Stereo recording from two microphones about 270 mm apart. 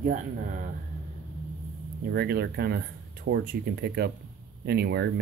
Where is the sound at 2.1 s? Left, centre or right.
Right.